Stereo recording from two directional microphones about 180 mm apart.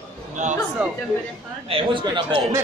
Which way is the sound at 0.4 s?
40° right (ahead or behind).